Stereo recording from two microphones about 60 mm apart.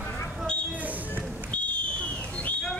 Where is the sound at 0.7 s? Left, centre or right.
Right.